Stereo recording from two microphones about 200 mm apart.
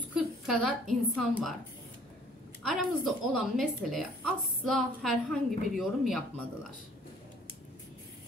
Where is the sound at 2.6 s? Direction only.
Centre (ahead or behind).